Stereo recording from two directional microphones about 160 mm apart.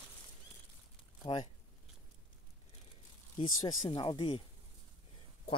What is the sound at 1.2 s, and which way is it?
Speech, 30° left (ahead or behind).